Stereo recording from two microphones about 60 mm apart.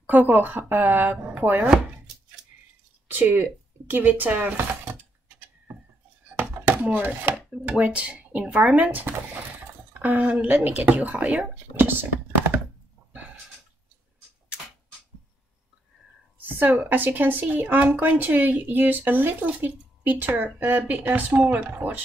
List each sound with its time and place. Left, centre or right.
0.1 s speech: right
3.1 s speech: right
6.6 s chopping: right
7.0 s speech: right
10.1 s speech: right
11.7 s computer keyboard: right
16.3 s a woman's voice: right